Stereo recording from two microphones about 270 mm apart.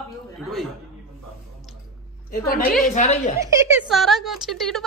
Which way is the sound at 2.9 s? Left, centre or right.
Left.